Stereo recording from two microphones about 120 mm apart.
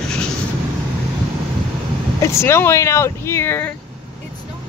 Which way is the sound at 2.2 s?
25° left (ahead or behind).